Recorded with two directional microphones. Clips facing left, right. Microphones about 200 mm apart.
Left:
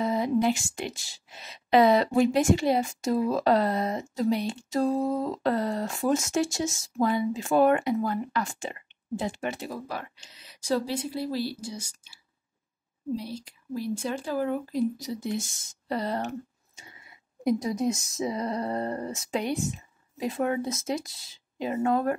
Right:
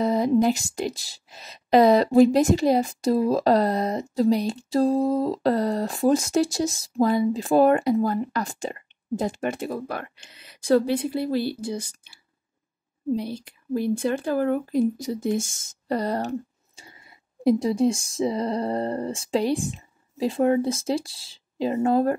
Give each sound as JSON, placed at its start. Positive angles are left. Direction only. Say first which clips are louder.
{"t": 0.0, "sound": "a woman's voice", "louder": "right 5 dB", "side_deg": -40}
{"t": 13.1, "sound": "a woman's voice", "louder": "right 6 dB", "side_deg": -60}